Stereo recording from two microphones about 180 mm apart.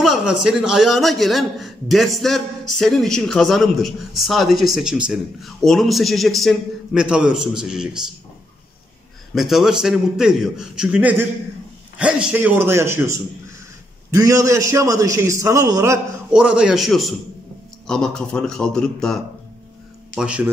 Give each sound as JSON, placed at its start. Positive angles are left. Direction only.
{"t": 0.0, "sound": "a man's voice", "side_deg": -5}
{"t": 9.3, "sound": "a man's voice", "side_deg": 0}
{"t": 16.3, "sound": "a man's voice", "side_deg": -5}
{"t": 20.2, "sound": "a man's voice", "side_deg": -5}